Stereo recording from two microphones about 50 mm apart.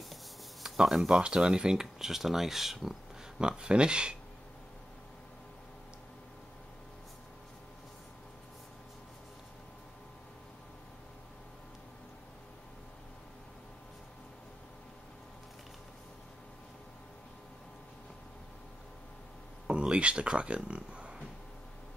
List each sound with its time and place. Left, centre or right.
0.1 s a sound: centre
0.7 s speech: centre
3.3 s speech: centre
19.7 s speech: right